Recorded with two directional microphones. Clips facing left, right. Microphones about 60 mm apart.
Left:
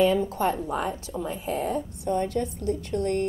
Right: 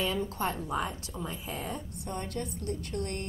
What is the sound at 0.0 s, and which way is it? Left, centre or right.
A woman's voice, centre.